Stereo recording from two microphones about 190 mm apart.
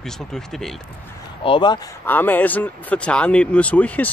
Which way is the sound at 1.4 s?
25° left (ahead or behind).